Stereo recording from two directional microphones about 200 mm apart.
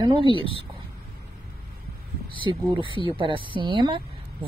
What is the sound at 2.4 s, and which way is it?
Speech, 25° right (ahead or behind).